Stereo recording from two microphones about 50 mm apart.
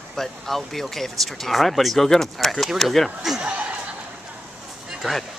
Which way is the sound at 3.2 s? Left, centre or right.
Centre.